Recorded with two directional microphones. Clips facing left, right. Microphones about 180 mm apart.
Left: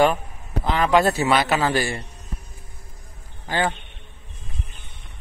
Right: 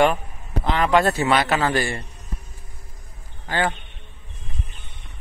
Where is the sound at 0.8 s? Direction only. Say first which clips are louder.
Left 1 dB; 15° left (ahead or behind).